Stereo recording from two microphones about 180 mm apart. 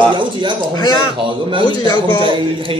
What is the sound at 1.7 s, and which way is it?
Speech, 25° left (ahead or behind).